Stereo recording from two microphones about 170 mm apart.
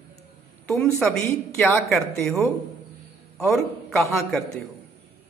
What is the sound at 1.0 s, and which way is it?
Speech, 5° left (ahead or behind).